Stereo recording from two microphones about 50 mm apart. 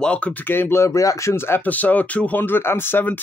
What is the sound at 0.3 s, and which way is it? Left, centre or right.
Speech, left.